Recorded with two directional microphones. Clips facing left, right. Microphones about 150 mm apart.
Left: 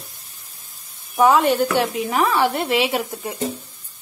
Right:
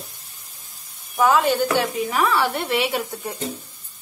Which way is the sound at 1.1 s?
Centre (ahead or behind).